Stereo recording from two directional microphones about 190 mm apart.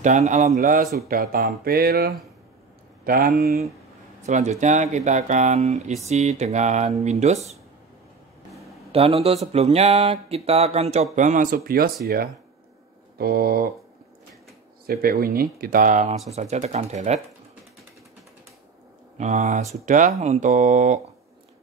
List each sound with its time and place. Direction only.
0.0 s speech: 40° right (ahead or behind)
1.0 s speech: 50° right (ahead or behind)
4.3 s speech: 40° right (ahead or behind)
8.9 s speech: 30° right (ahead or behind); by 13.7 s 55° right (ahead or behind)
14.9 s speech: 55° right (ahead or behind); by 17.2 s 35° right (ahead or behind)
19.1 s speech: 40° right (ahead or behind)